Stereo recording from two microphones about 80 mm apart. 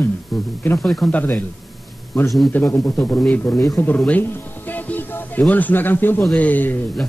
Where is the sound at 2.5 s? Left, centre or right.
Left.